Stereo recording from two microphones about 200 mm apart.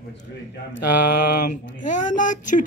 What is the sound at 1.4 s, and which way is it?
Speech, 40° left (ahead or behind).